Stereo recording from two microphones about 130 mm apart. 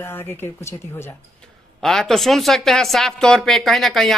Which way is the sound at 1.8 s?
5° left (ahead or behind).